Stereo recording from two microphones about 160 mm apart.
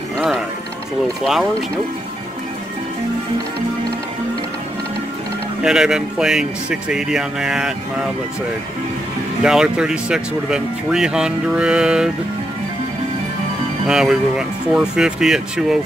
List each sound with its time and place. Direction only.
1.2 s speech: centre (ahead or behind)
5.6 s speech: 5° right (ahead or behind)
9.4 s speech: 5° right (ahead or behind)
13.8 s speech: 5° right (ahead or behind)